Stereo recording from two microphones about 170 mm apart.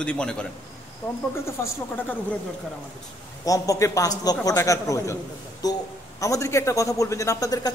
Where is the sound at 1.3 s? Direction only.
15° left (ahead or behind).